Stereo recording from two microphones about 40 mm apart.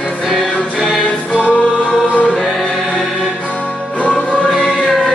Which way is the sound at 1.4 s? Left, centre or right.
Left.